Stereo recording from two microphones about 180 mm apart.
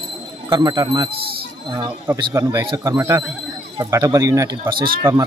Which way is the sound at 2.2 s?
25° right (ahead or behind).